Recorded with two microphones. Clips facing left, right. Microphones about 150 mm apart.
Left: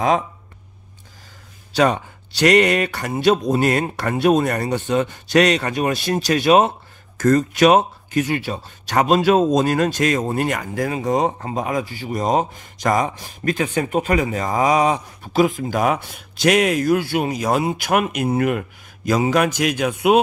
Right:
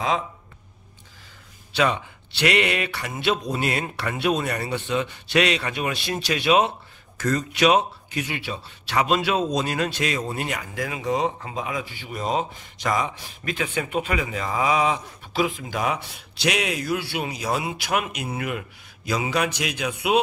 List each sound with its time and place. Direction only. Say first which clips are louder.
1.7 s speech: left 5 dB; 40° left (ahead or behind)